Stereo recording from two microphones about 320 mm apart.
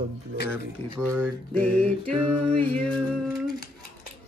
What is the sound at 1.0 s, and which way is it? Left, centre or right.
Speech, centre.